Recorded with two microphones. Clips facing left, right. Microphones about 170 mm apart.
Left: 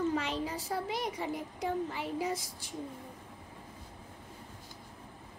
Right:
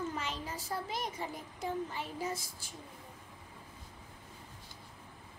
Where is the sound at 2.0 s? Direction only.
30° left (ahead or behind).